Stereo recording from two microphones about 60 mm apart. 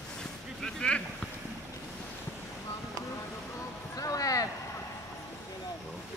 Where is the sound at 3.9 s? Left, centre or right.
Left.